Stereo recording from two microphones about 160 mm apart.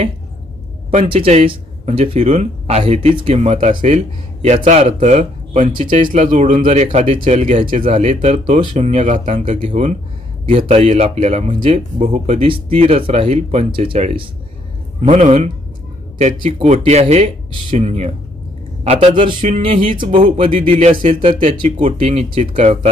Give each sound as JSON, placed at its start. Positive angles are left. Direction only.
{"t": 1.0, "sound": "speech", "side_deg": -35}
{"t": 15.0, "sound": "speech", "side_deg": -45}
{"t": 16.3, "sound": "speech", "side_deg": -35}
{"t": 20.9, "sound": "speech", "side_deg": -55}